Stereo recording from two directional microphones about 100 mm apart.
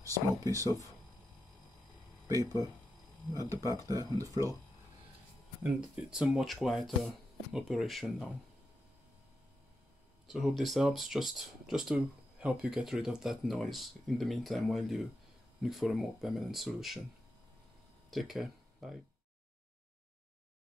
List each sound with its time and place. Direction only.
0.0 s speech: 35° right (ahead or behind)
2.2 s speech: 35° right (ahead or behind)
3.6 s speech: 35° right (ahead or behind)
5.6 s speech: 10° right (ahead or behind)
10.2 s speech: centre (ahead or behind)
18.1 s speech: centre (ahead or behind)